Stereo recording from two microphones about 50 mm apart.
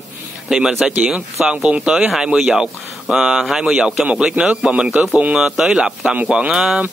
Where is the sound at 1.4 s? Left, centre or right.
Right.